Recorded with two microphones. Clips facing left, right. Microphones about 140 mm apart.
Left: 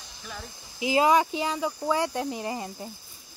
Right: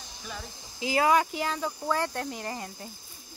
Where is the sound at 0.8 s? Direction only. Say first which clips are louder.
Left 2 dB; 20° left (ahead or behind).